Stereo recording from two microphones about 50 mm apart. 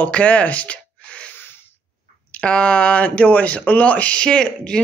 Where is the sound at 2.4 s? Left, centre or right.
Left.